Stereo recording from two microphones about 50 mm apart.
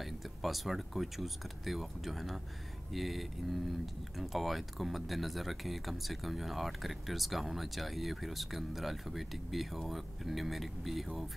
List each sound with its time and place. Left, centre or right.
0.0 s speech: centre